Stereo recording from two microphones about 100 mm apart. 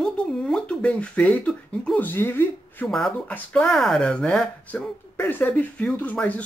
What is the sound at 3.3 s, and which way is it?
Speech, 10° left (ahead or behind).